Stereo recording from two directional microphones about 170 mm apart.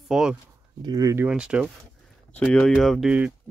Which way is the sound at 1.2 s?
5° right (ahead or behind).